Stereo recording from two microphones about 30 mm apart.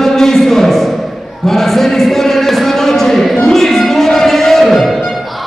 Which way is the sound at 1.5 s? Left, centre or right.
Centre.